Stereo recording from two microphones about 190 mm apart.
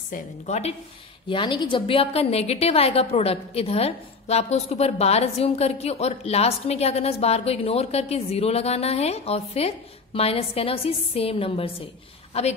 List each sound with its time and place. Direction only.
0.1 s a woman's voice: 35° left (ahead or behind)
1.3 s a woman's voice: 25° left (ahead or behind)